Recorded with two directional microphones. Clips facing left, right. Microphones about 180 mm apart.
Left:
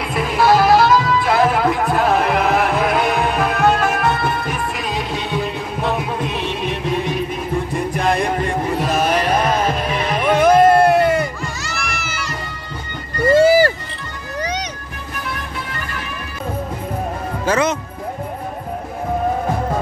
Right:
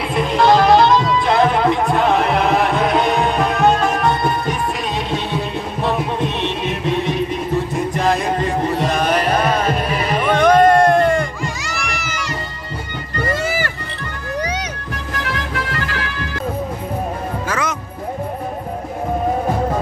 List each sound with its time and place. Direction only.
0.1 s music: 5° left (ahead or behind)
9.2 s music: 5° right (ahead or behind)
10.1 s music: 10° left (ahead or behind)
13.3 s run: 30° left (ahead or behind)
15.1 s music: 90° right
17.5 s music: 25° left (ahead or behind)